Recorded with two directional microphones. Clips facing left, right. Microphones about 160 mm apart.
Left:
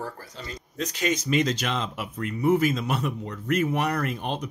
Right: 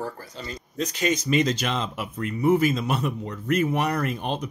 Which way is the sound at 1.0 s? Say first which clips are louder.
Right 1 dB; 35° right (ahead or behind).